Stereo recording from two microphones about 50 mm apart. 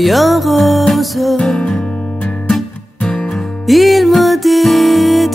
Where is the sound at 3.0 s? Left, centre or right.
Centre.